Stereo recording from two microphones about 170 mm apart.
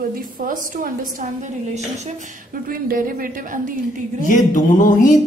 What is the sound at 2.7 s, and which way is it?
Speech, 55° right (ahead or behind).